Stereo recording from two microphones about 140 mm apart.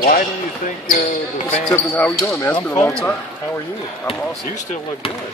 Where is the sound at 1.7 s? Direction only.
10° left (ahead or behind).